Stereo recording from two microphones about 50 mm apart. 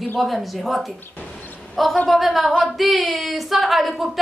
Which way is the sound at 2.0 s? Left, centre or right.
Centre.